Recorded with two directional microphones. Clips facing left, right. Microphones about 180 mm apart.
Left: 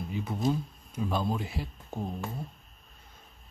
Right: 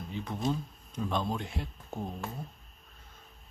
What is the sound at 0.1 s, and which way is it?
Speech, 10° left (ahead or behind).